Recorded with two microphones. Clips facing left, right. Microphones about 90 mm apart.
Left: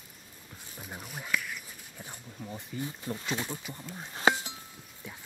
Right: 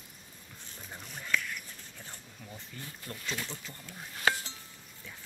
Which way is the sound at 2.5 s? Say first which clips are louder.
Left 9 dB; 20° left (ahead or behind).